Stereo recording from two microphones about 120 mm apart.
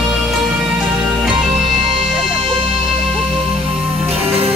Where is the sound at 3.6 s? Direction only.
55° right (ahead or behind).